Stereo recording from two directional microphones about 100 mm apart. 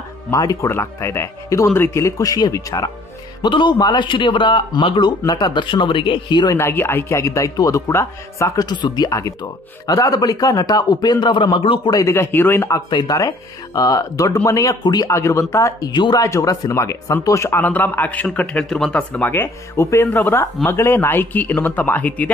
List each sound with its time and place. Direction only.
0.3 s speech: 35° left (ahead or behind)
0.7 s speech: 25° left (ahead or behind)
3.4 s speech: 50° left (ahead or behind)
5.2 s speech: 45° left (ahead or behind)
6.5 s speech: 25° left (ahead or behind)
8.6 s speech: 45° left (ahead or behind)
11.9 s speech: 30° left (ahead or behind)
13.1 s speech: 40° left (ahead or behind)
14.8 s speech: 45° left (ahead or behind)
15.0 s speech: 30° left (ahead or behind)
15.9 s speech: 50° left (ahead or behind)
16.2 s speech: 30° left (ahead or behind); by 19.2 s 10° left (ahead or behind)
19.2 s speech: 25° left (ahead or behind)